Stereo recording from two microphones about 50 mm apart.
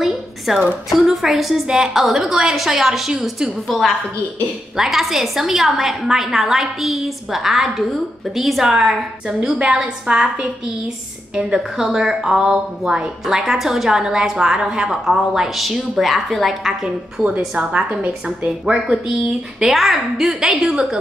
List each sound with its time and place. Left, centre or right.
0.5 s a woman's voice: centre
2.0 s a woman's voice: centre
3.6 s a woman's voice: centre
4.7 s a woman's voice: centre
10.0 s a woman's voice: centre
17.2 s a woman's voice: centre
17.6 s a woman's voice: right
19.6 s a woman's voice: centre